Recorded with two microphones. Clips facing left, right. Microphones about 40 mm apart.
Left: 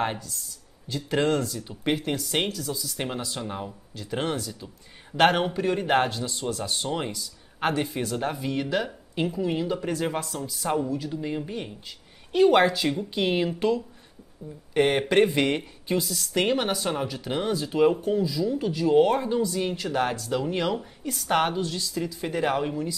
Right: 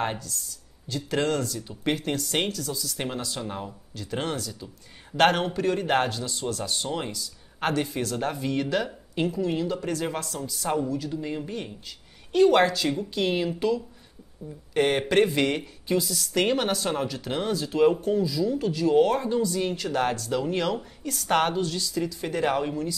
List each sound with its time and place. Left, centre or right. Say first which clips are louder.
0.8 s speech: left 2 dB; centre
14.7 s speech: left 1 dB; centre